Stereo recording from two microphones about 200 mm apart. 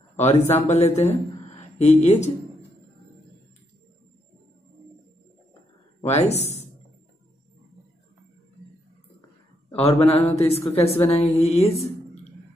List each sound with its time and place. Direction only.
0.1 s a sound: 35° left (ahead or behind)
0.7 s a woman's voice: 35° left (ahead or behind)
5.9 s speech: 35° left (ahead or behind)
9.7 s a man's voice: 30° left (ahead or behind)